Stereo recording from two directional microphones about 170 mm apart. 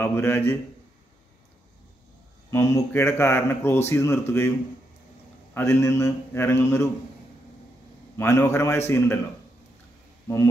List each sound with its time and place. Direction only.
0.0 s speech: 15° left (ahead or behind)
2.5 s speech: 15° left (ahead or behind)
5.5 s speech: 15° left (ahead or behind)
8.2 s speech: 15° left (ahead or behind)
10.2 s speech: 15° left (ahead or behind)